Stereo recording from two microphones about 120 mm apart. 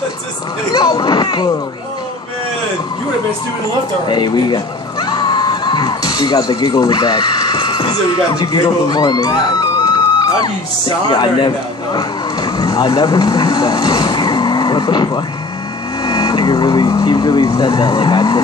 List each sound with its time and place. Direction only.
0.7 s a sound: 35° left (ahead or behind)
4.1 s speech: 40° left (ahead or behind)
5.0 s a sound: 35° left (ahead or behind)
8.4 s a man's voice: 35° left (ahead or behind)
16.0 s vehicle: 35° left (ahead or behind)
17.6 s speech: 35° left (ahead or behind)